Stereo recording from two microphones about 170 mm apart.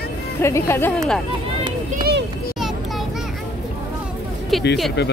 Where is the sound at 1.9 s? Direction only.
60° right (ahead or behind).